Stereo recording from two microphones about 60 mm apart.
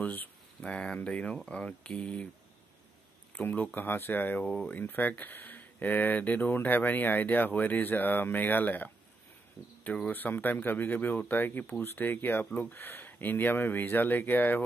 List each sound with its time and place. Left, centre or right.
0.0 s speech: left
0.6 s speech: centre
3.3 s speech: left
4.5 s speech: centre
4.7 s speech: left
10.0 s speech: left